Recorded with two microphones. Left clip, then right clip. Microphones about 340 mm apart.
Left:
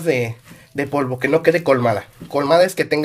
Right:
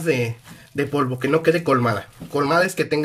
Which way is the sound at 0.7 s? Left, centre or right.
Centre.